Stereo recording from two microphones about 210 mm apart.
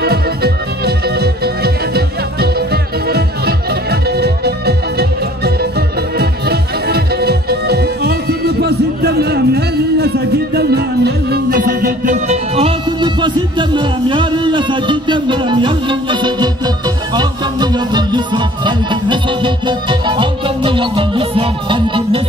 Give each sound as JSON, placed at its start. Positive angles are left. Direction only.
{"t": 0.0, "sound": "music", "side_deg": -50}